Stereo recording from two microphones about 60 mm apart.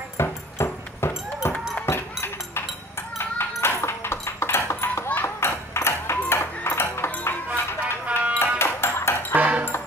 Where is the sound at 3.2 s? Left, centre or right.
Left.